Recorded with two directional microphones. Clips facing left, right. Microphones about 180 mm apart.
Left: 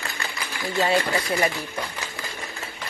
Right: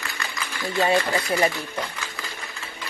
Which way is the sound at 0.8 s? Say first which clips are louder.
Right 1 dB; 20° right (ahead or behind).